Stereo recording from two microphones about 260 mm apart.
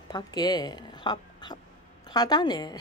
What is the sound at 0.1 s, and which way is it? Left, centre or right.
A woman's voice, centre.